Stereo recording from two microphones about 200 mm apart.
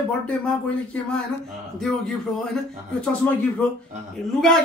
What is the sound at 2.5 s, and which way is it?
Speech, 5° left (ahead or behind).